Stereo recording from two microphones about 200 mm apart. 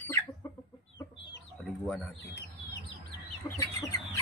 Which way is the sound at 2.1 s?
55° left (ahead or behind).